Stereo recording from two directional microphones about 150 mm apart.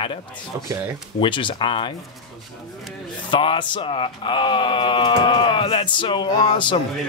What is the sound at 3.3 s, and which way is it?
Speech, 35° left (ahead or behind).